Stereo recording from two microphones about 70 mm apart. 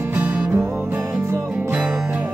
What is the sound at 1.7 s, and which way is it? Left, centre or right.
Music, centre.